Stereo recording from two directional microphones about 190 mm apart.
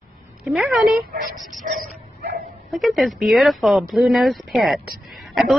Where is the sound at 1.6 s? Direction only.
45° right (ahead or behind).